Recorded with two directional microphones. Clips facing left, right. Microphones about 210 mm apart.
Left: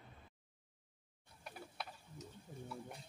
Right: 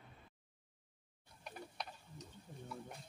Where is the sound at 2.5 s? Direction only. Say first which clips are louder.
Left 2 dB; 5° left (ahead or behind).